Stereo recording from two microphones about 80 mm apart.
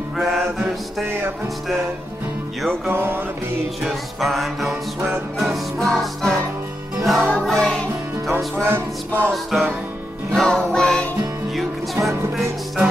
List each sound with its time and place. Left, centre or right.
0.2 s mantra: centre
2.9 s music: right
3.8 s music: centre
8.6 s music: right
9.3 s music: centre